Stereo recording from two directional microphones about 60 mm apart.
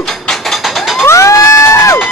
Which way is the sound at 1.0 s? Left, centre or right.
Left.